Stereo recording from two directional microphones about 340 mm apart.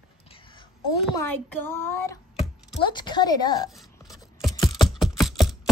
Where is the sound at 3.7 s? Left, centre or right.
Centre.